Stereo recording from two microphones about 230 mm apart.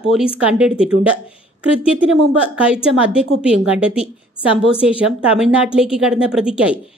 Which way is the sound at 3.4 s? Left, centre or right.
Centre.